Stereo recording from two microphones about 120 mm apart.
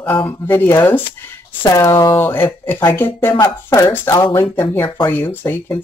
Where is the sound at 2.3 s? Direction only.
20° left (ahead or behind).